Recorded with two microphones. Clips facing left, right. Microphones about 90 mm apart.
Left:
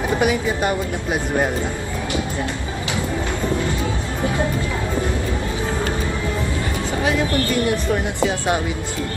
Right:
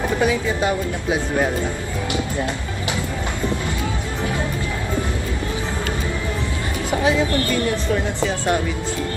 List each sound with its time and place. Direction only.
0.2 s speech: 15° left (ahead or behind)
7.9 s speech: 15° left (ahead or behind)